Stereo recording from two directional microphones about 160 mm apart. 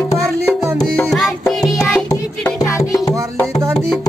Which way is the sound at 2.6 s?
20° left (ahead or behind).